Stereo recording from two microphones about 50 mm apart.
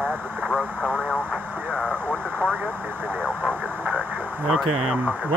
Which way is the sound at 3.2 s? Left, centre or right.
Right.